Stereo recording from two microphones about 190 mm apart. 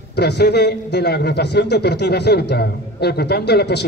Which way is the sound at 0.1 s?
60° left (ahead or behind).